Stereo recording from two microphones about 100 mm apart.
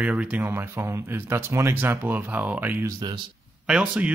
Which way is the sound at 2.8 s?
35° right (ahead or behind).